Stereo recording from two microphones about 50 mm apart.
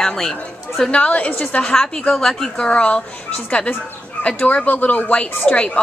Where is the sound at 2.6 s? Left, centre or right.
Left.